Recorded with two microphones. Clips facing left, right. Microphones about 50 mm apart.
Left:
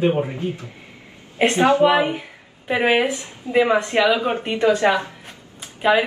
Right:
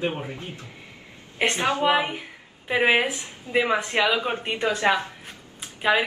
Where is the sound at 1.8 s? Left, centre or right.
Centre.